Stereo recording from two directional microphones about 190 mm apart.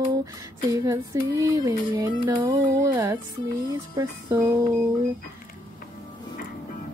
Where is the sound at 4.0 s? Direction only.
20° right (ahead or behind).